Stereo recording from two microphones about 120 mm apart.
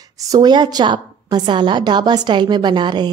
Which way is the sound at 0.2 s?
35° right (ahead or behind).